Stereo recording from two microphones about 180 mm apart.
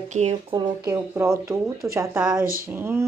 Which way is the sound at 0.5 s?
20° right (ahead or behind).